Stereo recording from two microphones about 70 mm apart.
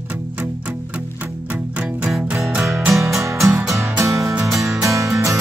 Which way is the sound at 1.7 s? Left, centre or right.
Centre.